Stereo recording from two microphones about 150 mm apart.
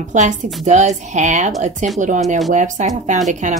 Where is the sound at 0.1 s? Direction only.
55° right (ahead or behind).